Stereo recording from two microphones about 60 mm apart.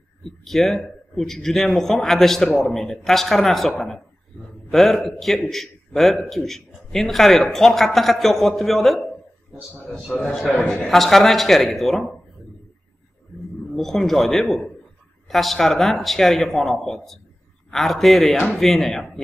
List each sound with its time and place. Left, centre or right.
0.4 s a man's voice: centre
10.4 s a man's voice: left
10.7 s a man's voice: centre
13.7 s a man's voice: centre